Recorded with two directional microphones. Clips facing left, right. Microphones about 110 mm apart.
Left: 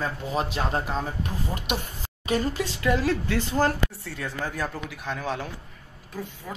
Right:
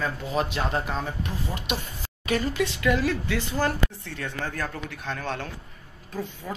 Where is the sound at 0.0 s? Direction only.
35° left (ahead or behind).